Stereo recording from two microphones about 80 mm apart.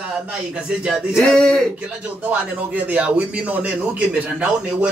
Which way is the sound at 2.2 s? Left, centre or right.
Centre.